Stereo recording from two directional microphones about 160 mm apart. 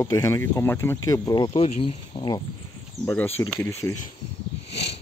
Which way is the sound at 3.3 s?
10° left (ahead or behind).